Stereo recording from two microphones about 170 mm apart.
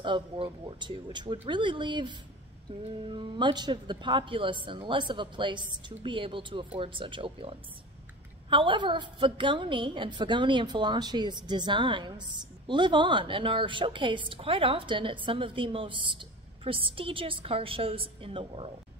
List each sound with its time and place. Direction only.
0.0 s a woman's voice: 30° right (ahead or behind)
2.7 s a sound: 30° right (ahead or behind)
3.1 s a woman's voice: 30° right (ahead or behind)